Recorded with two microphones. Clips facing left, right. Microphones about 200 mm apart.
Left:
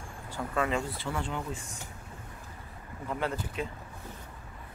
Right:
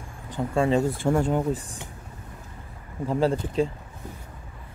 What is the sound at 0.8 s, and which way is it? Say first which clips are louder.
Speech: right 12 dB; 45° right (ahead or behind).